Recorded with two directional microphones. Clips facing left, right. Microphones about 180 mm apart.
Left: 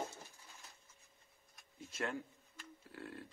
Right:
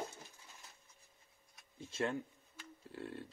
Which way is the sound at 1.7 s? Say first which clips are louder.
Right 4 dB; 25° right (ahead or behind).